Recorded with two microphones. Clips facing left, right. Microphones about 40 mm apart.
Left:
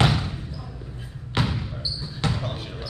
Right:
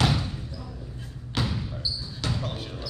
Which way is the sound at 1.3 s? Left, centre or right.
Left.